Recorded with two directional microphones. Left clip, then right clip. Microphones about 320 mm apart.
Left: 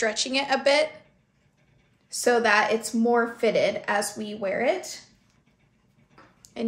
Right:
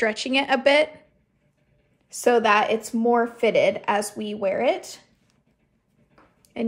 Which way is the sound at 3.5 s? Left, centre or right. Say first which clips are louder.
Right 3 dB; centre.